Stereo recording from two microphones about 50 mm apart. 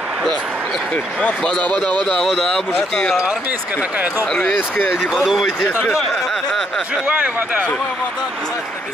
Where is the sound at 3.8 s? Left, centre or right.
Right.